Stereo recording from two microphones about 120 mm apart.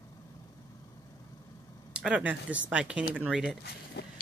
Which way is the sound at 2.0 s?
10° right (ahead or behind).